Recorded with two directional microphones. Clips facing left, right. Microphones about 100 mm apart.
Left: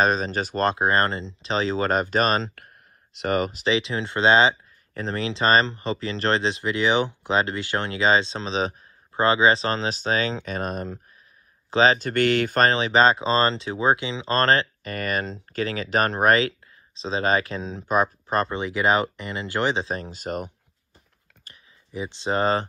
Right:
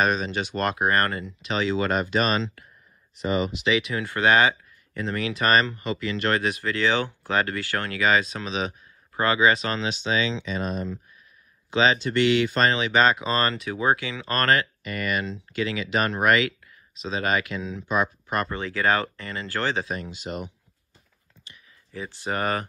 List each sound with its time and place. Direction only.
0.0 s speech: 35° left (ahead or behind)
2.5 s a sound: 65° left (ahead or behind)
3.3 s speech: 50° left (ahead or behind)
3.6 s speech: 30° left (ahead or behind); by 11.0 s 50° left (ahead or behind)
11.7 s speech: 35° left (ahead or behind)
18.5 s speech: 20° left (ahead or behind)
19.9 s speech: 35° left (ahead or behind)
21.9 s speech: 20° left (ahead or behind)